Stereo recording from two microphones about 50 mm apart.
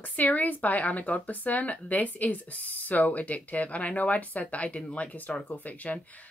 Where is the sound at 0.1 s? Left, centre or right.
Left.